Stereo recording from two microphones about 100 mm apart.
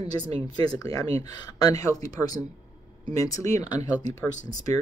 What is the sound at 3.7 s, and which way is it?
A woman's voice, 45° left (ahead or behind).